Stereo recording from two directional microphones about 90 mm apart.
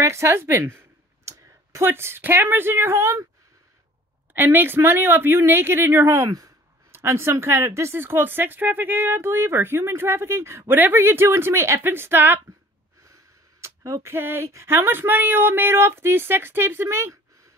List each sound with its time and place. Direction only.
0.0 s a woman's voice: 30° right (ahead or behind)
4.3 s speech: 20° right (ahead or behind)
13.6 s speech: 35° right (ahead or behind)